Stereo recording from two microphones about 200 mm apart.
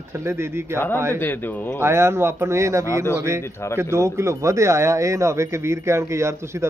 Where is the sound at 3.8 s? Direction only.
15° right (ahead or behind).